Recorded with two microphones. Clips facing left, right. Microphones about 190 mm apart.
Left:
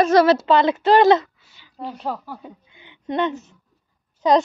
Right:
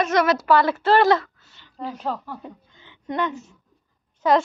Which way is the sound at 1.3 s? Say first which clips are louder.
Even; 10° left (ahead or behind).